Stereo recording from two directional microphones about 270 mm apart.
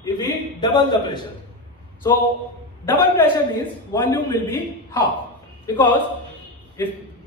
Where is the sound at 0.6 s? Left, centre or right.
Centre.